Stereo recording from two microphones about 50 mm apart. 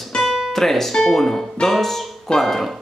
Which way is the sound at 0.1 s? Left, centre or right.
Centre.